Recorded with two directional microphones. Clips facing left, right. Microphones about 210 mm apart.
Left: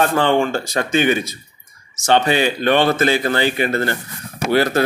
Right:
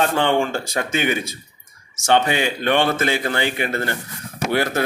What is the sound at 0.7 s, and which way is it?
Speech, 10° right (ahead or behind).